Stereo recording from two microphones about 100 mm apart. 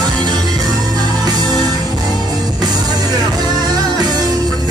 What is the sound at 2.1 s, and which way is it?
Music, 40° right (ahead or behind).